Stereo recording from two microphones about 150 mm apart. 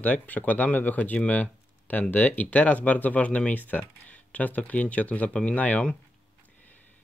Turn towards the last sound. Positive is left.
turn(degrees=10)  # may be behind; listen again after turning